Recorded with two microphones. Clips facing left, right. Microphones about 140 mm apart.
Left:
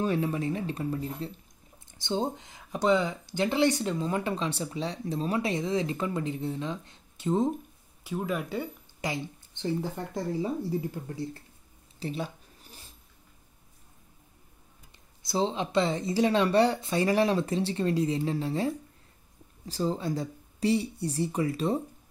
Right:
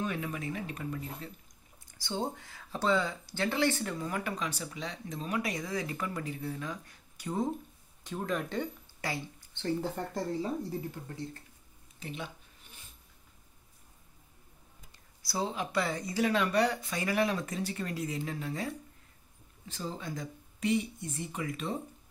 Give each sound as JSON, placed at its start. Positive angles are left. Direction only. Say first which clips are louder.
{"t": 0.0, "sound": "speech", "louder": "left 7 dB", "side_deg": 30}
{"t": 8.0, "sound": "speech", "louder": "left 3 dB", "side_deg": 5}
{"t": 9.0, "sound": "speech", "louder": "left 4 dB", "side_deg": 20}
{"t": 12.0, "sound": "a sound", "louder": "left 7 dB", "side_deg": 35}
{"t": 15.2, "sound": "speech", "louder": "left 6 dB", "side_deg": 25}